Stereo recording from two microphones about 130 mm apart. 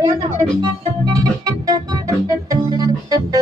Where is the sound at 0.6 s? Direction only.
30° right (ahead or behind).